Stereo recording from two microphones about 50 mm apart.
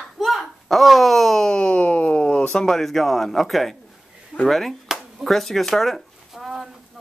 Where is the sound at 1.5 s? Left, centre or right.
Centre.